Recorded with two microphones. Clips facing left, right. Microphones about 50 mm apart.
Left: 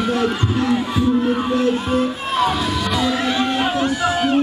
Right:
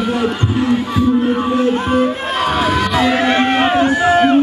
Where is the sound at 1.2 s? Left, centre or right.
Centre.